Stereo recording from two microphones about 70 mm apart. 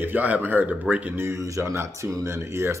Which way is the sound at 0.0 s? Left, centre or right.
Right.